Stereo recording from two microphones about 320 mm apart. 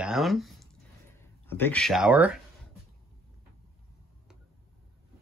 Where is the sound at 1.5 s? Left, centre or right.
Centre.